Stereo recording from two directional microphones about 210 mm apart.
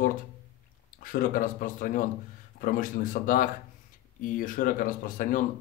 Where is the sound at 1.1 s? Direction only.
40° left (ahead or behind).